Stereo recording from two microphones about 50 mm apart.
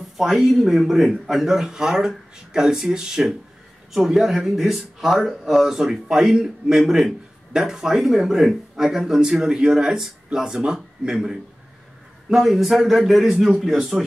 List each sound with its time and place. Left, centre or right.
0.2 s a man's voice: centre